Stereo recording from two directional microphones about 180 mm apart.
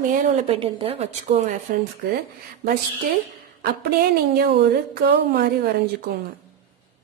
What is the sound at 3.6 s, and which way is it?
A woman's voice, 60° right (ahead or behind).